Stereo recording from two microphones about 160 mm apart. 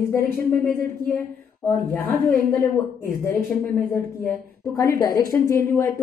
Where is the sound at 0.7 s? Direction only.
5° left (ahead or behind).